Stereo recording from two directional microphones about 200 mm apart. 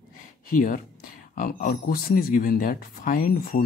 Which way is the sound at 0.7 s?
45° left (ahead or behind).